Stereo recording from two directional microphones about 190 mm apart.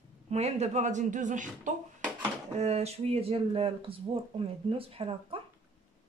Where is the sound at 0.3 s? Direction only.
35° right (ahead or behind).